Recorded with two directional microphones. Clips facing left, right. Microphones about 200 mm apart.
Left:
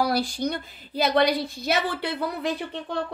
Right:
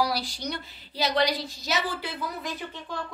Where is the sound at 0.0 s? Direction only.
50° left (ahead or behind).